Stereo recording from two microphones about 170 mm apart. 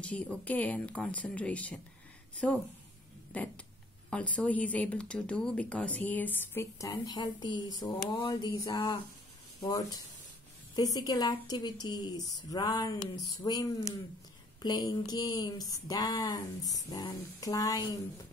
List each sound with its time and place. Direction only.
0.0 s a woman's voice: 10° left (ahead or behind)